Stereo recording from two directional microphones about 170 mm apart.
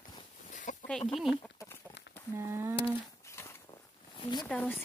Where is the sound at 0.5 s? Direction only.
50° left (ahead or behind).